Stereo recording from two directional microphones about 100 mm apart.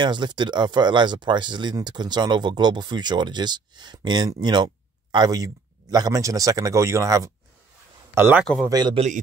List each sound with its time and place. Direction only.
0.0 s speech: 50° right (ahead or behind); by 8.4 s 25° right (ahead or behind)
8.6 s speech: 45° right (ahead or behind)